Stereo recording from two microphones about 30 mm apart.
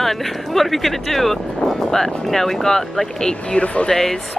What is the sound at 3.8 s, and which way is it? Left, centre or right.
Speech, centre.